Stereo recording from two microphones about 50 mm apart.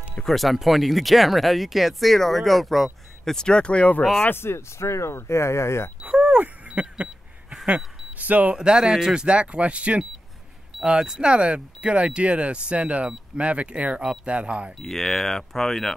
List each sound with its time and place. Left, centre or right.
0.2 s speech: centre
3.3 s speech: centre
4.2 s speech: left
6.0 s a sound: right
7.6 s speech: right
8.5 s speech: centre
14.8 s speech: centre